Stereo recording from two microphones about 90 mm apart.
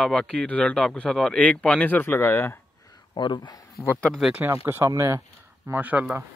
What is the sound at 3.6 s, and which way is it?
Speech, 35° left (ahead or behind).